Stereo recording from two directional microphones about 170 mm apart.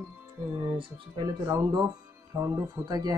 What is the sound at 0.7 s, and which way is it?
Speech, 30° right (ahead or behind).